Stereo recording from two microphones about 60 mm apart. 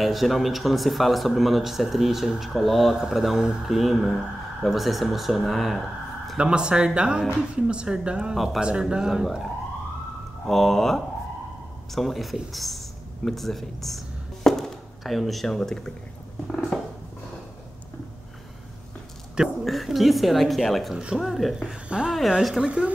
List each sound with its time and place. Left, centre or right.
0.0 s speech: centre
6.3 s speech: centre
10.4 s speech: centre
12.5 s music: centre
16.7 s purr: centre
19.6 s speech: centre
20.9 s speech: centre
21.2 s speech: centre
21.8 s speech: centre